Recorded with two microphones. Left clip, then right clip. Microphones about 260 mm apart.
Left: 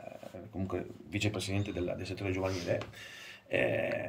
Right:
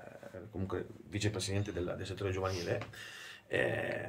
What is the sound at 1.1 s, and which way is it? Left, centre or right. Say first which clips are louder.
Speech: left 2 dB; right.